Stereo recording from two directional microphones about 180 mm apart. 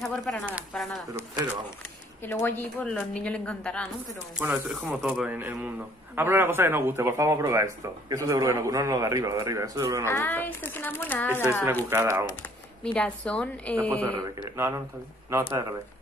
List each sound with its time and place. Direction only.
0.0 s a sound: centre (ahead or behind)
2.2 s a woman's voice: 10° left (ahead or behind); by 10.0 s 20° right (ahead or behind)
10.0 s a woman's voice: 10° left (ahead or behind)
11.9 s a man's voice: 15° right (ahead or behind)
12.8 s a woman's voice: 5° left (ahead or behind)
13.8 s a man's voice: 20° right (ahead or behind)